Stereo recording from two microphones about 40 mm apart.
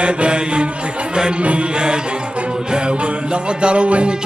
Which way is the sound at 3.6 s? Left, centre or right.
Right.